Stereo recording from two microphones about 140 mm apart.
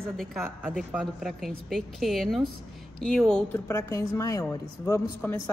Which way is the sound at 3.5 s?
15° left (ahead or behind).